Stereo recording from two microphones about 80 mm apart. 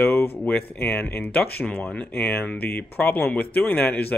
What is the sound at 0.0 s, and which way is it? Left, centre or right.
Speech, left.